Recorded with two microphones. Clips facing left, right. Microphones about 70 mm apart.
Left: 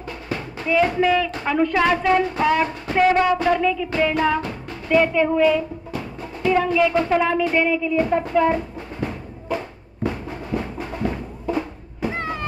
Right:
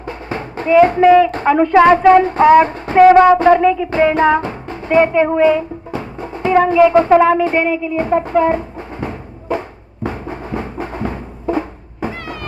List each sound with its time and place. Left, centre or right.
0.0 s a woman's voice: right
3.3 s music: right
12.1 s cat: left